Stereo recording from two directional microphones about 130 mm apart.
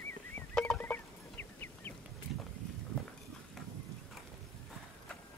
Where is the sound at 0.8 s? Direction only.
15° left (ahead or behind).